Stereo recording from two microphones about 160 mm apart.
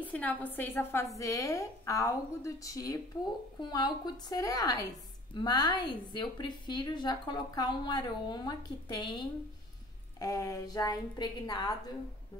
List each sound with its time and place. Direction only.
0.0 s a woman's voice: 10° left (ahead or behind); by 11.7 s 25° left (ahead or behind)